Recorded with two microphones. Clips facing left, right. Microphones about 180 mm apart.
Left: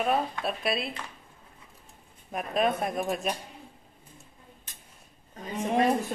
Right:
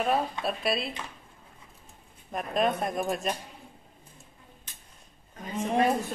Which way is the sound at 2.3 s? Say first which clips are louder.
Even; centre (ahead or behind).